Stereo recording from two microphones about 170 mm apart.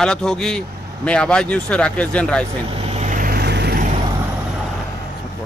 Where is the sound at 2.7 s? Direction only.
40° right (ahead or behind); by 3.8 s 75° right (ahead or behind).